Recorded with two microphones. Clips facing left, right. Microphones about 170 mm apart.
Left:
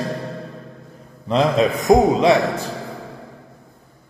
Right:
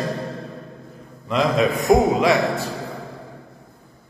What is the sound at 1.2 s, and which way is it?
A man's voice, 30° left (ahead or behind).